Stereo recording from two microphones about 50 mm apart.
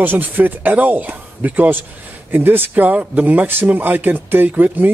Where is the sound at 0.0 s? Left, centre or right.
Right.